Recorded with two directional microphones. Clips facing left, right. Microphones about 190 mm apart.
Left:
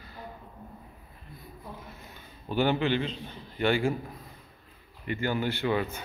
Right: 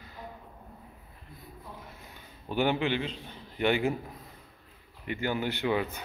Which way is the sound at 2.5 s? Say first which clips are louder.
Left 2 dB; 15° right (ahead or behind).